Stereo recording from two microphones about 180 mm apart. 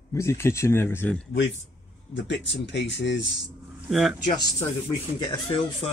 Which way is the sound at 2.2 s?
80° left.